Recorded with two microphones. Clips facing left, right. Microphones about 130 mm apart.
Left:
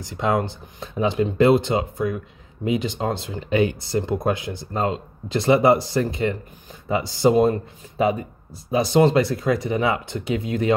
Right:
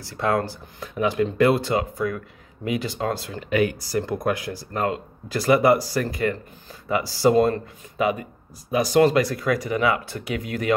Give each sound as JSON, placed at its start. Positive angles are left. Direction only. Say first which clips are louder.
{"t": 0.0, "sound": "speech", "louder": "left 1 dB", "side_deg": 20}
{"t": 8.0, "sound": "speech", "louder": "left 2 dB", "side_deg": 30}